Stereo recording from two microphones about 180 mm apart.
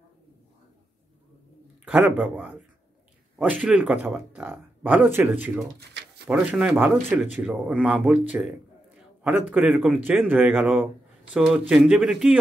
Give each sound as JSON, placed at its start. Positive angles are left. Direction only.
{"t": 1.9, "sound": "speech", "side_deg": -10}
{"t": 5.8, "sound": "a sound", "side_deg": -65}
{"t": 6.2, "sound": "speech", "side_deg": -5}